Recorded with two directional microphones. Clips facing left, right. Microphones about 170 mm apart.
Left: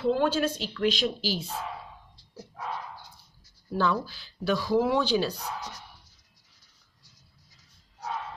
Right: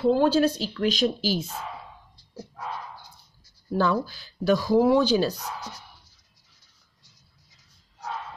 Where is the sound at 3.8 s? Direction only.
45° right (ahead or behind).